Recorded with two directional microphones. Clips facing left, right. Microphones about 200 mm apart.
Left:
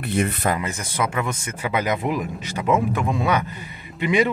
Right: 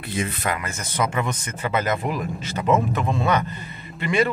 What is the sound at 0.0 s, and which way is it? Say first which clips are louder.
Speech: left 5 dB; 65° left (ahead or behind).